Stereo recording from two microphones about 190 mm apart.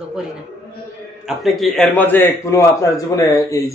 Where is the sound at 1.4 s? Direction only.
Centre (ahead or behind).